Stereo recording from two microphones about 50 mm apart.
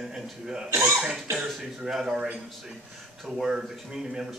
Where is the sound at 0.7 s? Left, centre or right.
Right.